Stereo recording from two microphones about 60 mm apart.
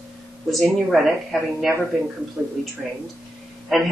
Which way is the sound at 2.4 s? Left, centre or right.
Right.